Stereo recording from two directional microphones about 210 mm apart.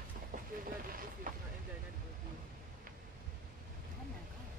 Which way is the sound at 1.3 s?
40° right (ahead or behind).